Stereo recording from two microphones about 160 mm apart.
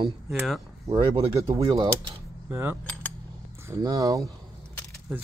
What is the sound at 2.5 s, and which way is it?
A man's voice, 15° right (ahead or behind).